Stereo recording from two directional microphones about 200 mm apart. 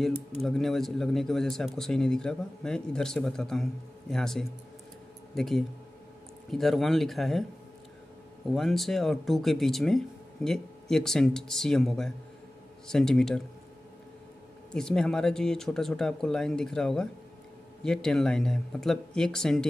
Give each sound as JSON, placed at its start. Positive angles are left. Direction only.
{"t": 0.4, "sound": "speech", "side_deg": 0}
{"t": 8.5, "sound": "speech", "side_deg": 0}
{"t": 14.7, "sound": "speech", "side_deg": 5}